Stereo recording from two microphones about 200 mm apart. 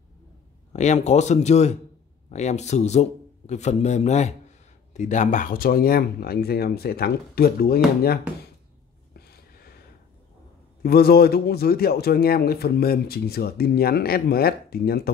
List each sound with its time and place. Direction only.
0.7 s a man's voice: 35° left (ahead or behind)
9.1 s a sound: 50° left (ahead or behind)
10.8 s a man's voice: 50° left (ahead or behind)